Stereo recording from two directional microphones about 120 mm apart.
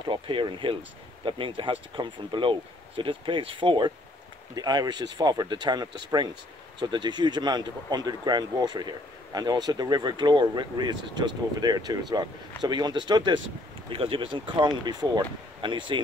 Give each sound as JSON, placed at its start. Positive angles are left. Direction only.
{"t": 0.0, "sound": "speech", "side_deg": -45}
{"t": 13.8, "sound": "speech", "side_deg": -50}